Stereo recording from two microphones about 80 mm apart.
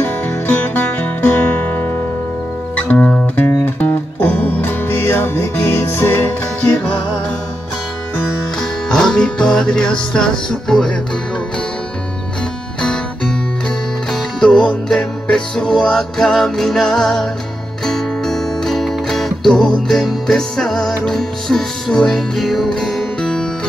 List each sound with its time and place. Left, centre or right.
0.0 s music: left
2.7 s music: centre
8.8 s music: centre
12.8 s music: centre
14.4 s music: centre